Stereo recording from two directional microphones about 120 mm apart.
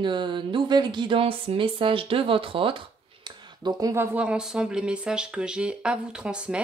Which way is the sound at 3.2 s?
40° right (ahead or behind).